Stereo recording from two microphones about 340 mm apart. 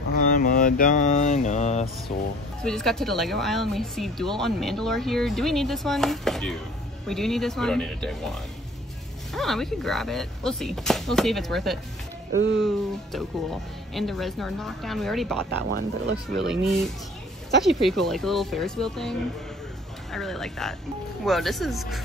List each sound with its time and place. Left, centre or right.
0.1 s mantra: left
2.6 s speech: centre
12.3 s speech: right
12.6 s speech: centre
15.7 s a child's voice: right
17.6 s speech: centre